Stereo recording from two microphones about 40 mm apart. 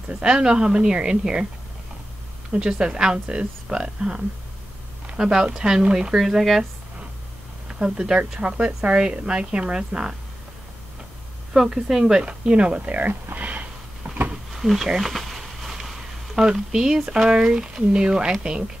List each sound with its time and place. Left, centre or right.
0.2 s a woman's voice: centre
2.5 s a woman's voice: right
6.1 s speech: centre
7.6 s speech: right
8.4 s a woman's voice: right
11.5 s speech: centre
12.2 s a woman's voice: right
13.4 s sniff: right
14.0 s a sound: right
14.5 s a sound: centre
16.3 s a woman's voice: centre